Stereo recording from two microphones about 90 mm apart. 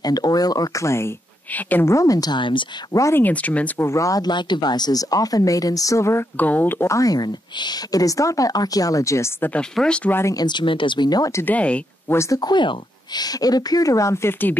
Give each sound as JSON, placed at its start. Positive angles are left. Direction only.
{"t": 0.0, "sound": "speech", "side_deg": 45}
{"t": 1.5, "sound": "speech", "side_deg": 20}
{"t": 1.9, "sound": "speech", "side_deg": 40}
{"t": 2.4, "sound": "speech", "side_deg": 65}
{"t": 2.9, "sound": "speech", "side_deg": 35}
{"t": 3.2, "sound": "speech", "side_deg": 15}
{"t": 3.8, "sound": "speech", "side_deg": 35}
{"t": 6.3, "sound": "speech", "side_deg": 20}
{"t": 6.9, "sound": "speech", "side_deg": 40}
{"t": 9.4, "sound": "speech", "side_deg": 15}
{"t": 10.3, "sound": "speech", "side_deg": 55}
{"t": 11.4, "sound": "speech", "side_deg": 15}
{"t": 12.1, "sound": "speech", "side_deg": 30}
{"t": 12.4, "sound": "speech", "side_deg": 55}